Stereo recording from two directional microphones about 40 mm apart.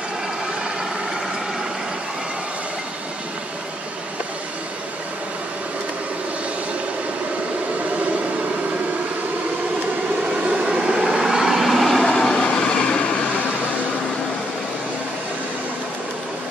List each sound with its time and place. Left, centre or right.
10.4 s vehicle: right; by 12.6 s centre
12.6 s train: left